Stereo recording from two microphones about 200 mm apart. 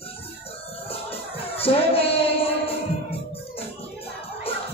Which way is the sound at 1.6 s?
30° left (ahead or behind).